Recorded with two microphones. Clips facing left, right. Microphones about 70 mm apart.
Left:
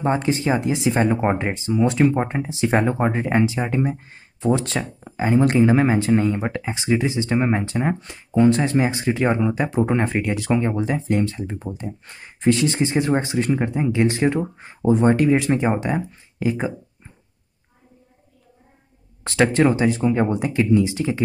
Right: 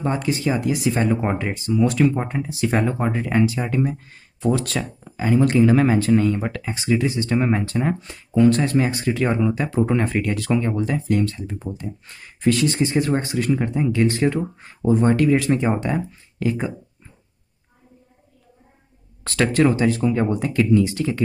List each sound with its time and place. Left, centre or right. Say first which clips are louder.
0.0 s speech: left 2 dB; left
19.2 s speech: left 1 dB; left